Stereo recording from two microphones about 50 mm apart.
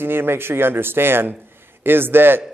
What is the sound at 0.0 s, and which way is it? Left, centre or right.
A man's voice, right.